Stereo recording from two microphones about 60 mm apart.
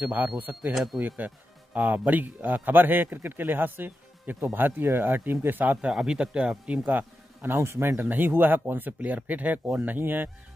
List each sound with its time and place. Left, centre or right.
0.0 s a man's voice: right
5.6 s speech: right
5.9 s speech: centre
6.8 s speech: right
7.5 s speech: right
8.0 s a man's voice: right